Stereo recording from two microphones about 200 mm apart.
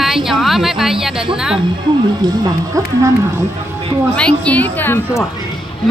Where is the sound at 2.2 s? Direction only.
20° right (ahead or behind).